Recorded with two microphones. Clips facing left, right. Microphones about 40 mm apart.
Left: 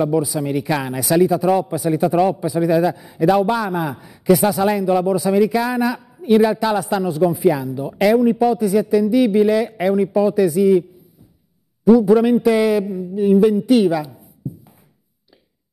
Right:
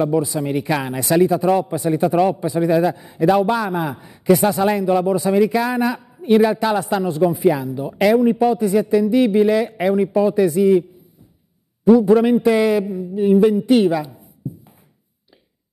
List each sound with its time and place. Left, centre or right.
0.1 s a man's voice: centre
5.3 s a man's voice: centre
12.1 s a man's voice: centre
12.8 s a man's voice: centre